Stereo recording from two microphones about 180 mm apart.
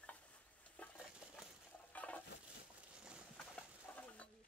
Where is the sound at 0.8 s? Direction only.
5° left (ahead or behind).